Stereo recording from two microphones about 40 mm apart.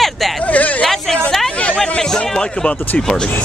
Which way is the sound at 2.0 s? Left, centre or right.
Centre.